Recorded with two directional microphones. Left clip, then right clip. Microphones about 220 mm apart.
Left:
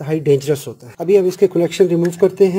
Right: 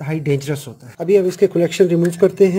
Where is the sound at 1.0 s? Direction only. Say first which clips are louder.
Left 1 dB; 5° left (ahead or behind).